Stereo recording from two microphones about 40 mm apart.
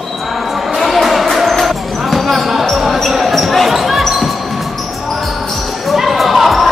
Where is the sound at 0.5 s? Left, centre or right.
Centre.